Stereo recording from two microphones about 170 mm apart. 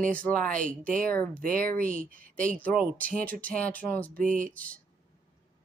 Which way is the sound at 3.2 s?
10° left (ahead or behind).